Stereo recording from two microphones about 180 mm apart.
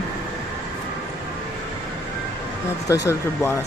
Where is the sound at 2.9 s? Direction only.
15° left (ahead or behind).